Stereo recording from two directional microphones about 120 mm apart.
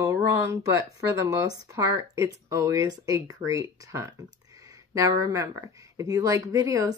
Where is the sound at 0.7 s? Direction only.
25° right (ahead or behind).